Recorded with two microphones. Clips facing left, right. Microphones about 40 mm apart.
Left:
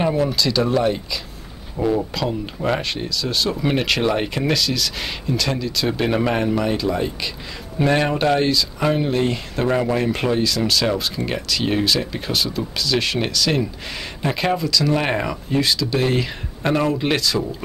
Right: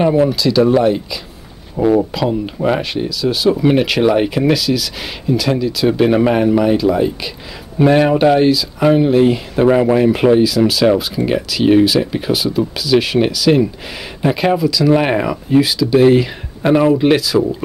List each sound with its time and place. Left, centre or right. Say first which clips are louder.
0.0 s speech: right 6 dB; centre
1.8 s speech: right 7 dB; centre
2.1 s speech: right 6 dB; centre